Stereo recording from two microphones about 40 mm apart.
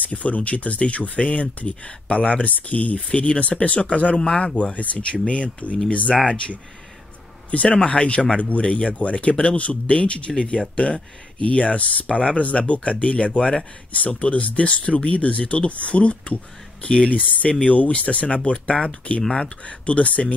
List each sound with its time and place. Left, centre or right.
0.0 s speech: left
4.7 s speech: left
7.6 s speech: left
14.2 s speech: left